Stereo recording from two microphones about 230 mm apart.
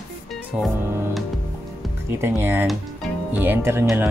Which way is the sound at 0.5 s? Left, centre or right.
Centre.